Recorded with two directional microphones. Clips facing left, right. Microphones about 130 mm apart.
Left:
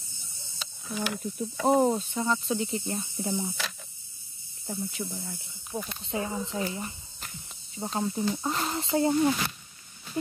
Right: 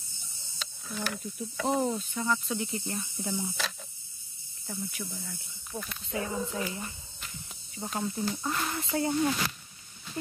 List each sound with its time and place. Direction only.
0.6 s speech: 5° left (ahead or behind)
1.8 s speech: 40° left (ahead or behind)
2.1 s speech: 25° left (ahead or behind)
4.6 s speech: 25° left (ahead or behind)